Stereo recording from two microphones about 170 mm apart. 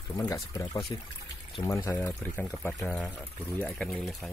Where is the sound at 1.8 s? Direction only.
15° left (ahead or behind).